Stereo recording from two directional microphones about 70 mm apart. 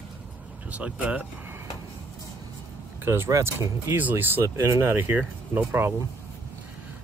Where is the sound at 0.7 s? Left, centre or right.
Right.